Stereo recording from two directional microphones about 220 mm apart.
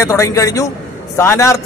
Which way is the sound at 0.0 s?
15° left (ahead or behind).